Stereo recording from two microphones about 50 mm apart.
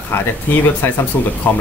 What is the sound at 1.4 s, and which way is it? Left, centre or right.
Speech, left.